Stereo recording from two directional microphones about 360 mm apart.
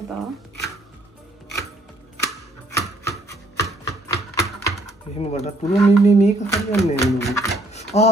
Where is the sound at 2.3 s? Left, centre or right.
Centre.